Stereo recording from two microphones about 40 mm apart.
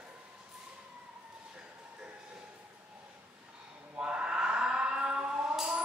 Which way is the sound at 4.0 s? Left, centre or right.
Right.